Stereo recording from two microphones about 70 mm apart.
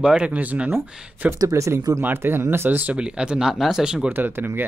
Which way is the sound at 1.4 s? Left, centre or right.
Right.